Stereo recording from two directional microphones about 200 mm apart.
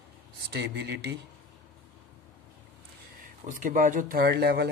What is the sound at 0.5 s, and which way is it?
Speech, 55° right (ahead or behind).